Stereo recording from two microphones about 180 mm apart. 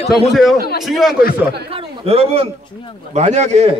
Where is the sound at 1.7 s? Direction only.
35° right (ahead or behind).